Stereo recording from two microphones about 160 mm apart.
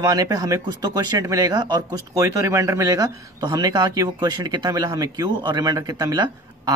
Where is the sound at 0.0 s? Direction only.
20° right (ahead or behind).